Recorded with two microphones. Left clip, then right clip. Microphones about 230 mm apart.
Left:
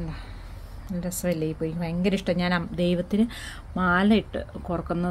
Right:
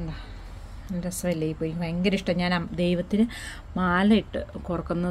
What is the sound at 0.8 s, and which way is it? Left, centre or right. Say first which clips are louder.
A woman's voice: left 1 dB; centre.